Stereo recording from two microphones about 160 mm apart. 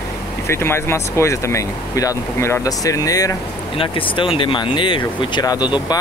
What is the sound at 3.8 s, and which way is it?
Speech, 35° left (ahead or behind).